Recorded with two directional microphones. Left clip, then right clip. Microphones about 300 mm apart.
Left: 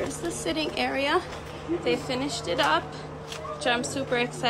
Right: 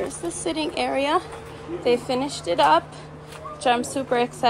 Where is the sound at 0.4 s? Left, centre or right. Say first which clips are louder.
Right 3 dB; centre.